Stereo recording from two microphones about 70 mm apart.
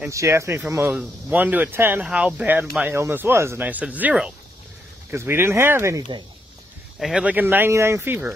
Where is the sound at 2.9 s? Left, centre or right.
Right.